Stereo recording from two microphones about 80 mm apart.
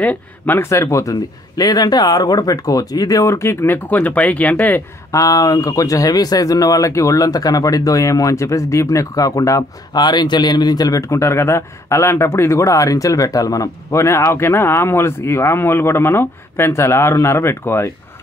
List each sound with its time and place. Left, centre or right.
0.0 s speech: centre
0.6 s speech: left
1.6 s speech: left
5.1 s speech: left
9.9 s speech: left